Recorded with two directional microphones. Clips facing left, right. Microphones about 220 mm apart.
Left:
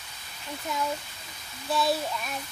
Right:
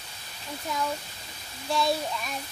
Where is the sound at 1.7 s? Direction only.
Centre (ahead or behind).